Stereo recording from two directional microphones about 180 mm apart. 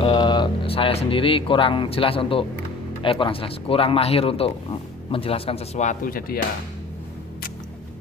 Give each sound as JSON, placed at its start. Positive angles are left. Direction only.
{"t": 0.0, "sound": "speech", "side_deg": 25}